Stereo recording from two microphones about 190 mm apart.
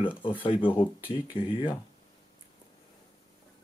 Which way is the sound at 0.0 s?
25° left (ahead or behind).